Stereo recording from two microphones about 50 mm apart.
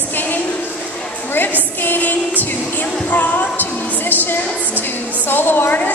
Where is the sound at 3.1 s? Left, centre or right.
Left.